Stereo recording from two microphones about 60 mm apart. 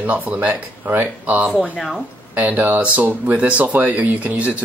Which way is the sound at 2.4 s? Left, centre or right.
Right.